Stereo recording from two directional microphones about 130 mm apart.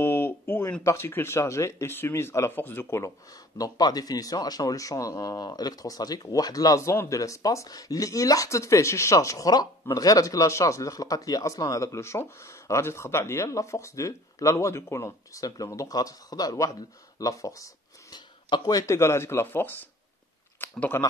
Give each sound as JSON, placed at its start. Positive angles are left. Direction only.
{"t": 0.0, "sound": "speech", "side_deg": 15}
{"t": 3.5, "sound": "speech", "side_deg": 30}